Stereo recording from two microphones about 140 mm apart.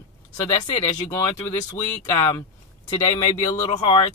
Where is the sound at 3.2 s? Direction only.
25° left (ahead or behind).